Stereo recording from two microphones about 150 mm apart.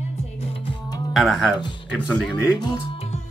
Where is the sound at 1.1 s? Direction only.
Centre (ahead or behind).